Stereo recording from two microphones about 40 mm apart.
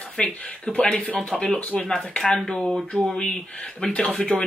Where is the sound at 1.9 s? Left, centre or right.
Centre.